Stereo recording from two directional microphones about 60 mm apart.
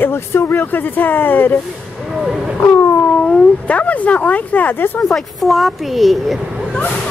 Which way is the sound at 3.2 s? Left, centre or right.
Centre.